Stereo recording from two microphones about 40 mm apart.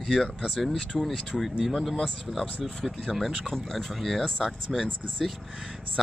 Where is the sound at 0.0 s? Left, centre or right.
Centre.